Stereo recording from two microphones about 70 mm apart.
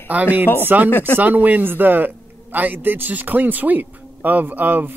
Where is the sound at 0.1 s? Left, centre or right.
Right.